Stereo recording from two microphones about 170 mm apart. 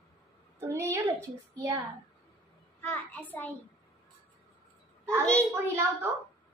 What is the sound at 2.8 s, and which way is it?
Speech, 10° left (ahead or behind).